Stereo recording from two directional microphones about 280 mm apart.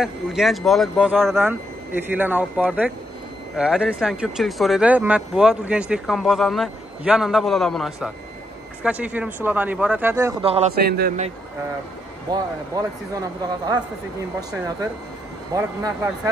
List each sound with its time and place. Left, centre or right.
0.0 s speech: centre; by 10.7 s right
10.7 s a man's voice: right
12.3 s speech: centre
15.5 s speech: centre